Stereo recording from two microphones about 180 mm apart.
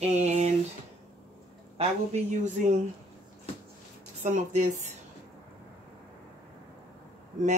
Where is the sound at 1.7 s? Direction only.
40° right (ahead or behind).